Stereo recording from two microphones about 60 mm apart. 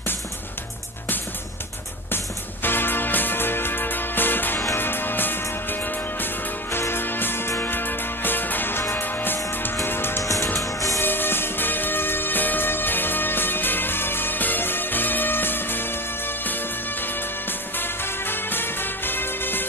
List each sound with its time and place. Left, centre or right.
2.6 s music: left
10.6 s music: left
11.0 s music: left
17.0 s music: left